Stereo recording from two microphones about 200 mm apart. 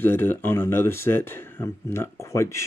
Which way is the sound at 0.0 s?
10° left (ahead or behind).